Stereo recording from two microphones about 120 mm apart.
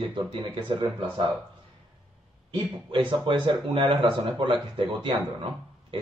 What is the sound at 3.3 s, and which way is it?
Speech, 45° right (ahead or behind).